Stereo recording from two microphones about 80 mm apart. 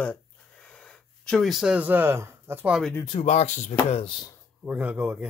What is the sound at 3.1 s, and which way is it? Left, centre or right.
Speech, left.